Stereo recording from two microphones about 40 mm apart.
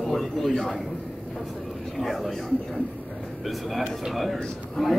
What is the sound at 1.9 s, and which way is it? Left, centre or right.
Speech, centre.